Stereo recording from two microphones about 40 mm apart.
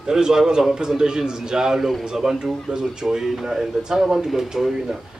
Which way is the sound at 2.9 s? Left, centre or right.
Centre.